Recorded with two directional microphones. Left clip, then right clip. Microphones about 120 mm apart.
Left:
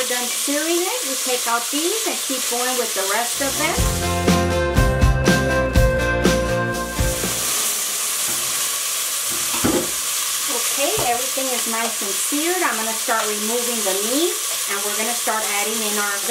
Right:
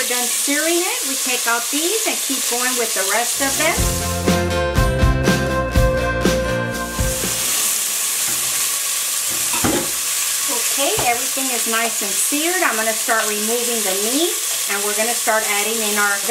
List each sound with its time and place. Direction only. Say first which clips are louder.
4.3 s music: right 2 dB; centre (ahead or behind)